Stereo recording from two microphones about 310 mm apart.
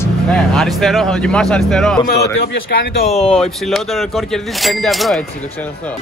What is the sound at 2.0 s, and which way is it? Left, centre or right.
A man's voice, left.